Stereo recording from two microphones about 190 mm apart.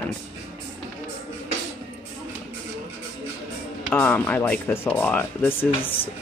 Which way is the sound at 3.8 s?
10° left (ahead or behind).